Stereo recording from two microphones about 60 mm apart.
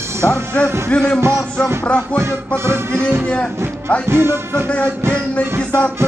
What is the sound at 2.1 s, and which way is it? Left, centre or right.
Music, right.